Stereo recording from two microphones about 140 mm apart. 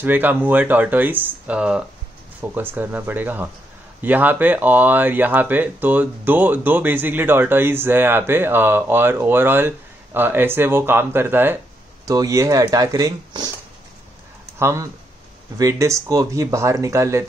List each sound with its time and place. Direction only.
0.0 s speech: 15° right (ahead or behind)
14.6 s speech: 20° right (ahead or behind)